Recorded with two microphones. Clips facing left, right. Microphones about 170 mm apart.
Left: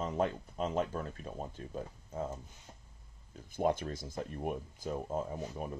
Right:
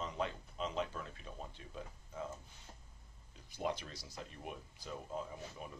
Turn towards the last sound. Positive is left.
turn(degrees=45)  # may be behind; listen again after turning